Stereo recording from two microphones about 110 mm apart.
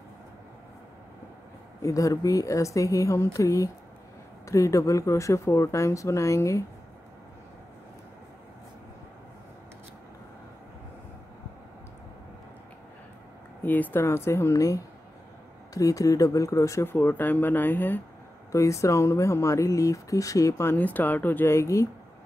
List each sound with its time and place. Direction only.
1.8 s speech: 30° left (ahead or behind)
13.7 s speech: 15° left (ahead or behind)
18.5 s speech: 30° left (ahead or behind)
20.7 s speech: 15° left (ahead or behind)